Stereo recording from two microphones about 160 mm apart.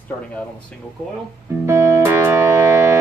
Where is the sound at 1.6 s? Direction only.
15° right (ahead or behind).